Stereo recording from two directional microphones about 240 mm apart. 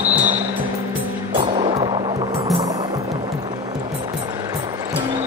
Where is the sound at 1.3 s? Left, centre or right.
Right.